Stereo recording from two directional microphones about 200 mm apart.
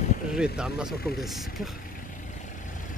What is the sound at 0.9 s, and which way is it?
Speech, 50° left (ahead or behind).